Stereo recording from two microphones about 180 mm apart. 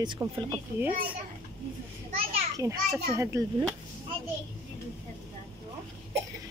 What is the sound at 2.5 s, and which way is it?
Speech, 15° right (ahead or behind).